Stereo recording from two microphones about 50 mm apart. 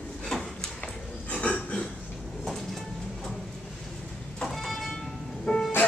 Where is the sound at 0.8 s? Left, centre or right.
Left.